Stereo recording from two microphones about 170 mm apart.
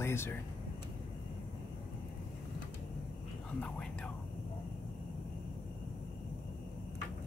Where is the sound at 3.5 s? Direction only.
5° left (ahead or behind).